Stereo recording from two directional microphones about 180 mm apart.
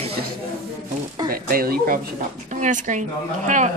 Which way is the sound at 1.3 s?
55° right (ahead or behind).